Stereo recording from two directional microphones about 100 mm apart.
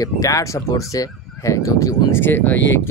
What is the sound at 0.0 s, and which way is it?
Speech, 35° left (ahead or behind).